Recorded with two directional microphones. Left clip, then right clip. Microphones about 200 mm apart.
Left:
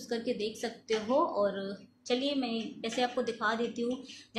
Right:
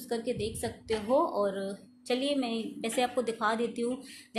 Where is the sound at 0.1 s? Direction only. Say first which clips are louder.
Right 1 dB; 20° right (ahead or behind).